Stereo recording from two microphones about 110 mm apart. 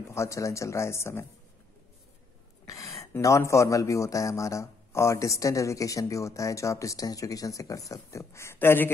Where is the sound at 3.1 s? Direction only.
25° left (ahead or behind).